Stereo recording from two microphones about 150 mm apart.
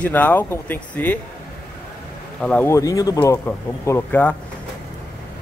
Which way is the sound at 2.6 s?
20° left (ahead or behind).